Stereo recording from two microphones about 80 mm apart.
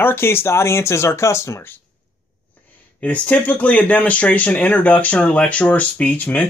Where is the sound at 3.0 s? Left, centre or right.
Centre.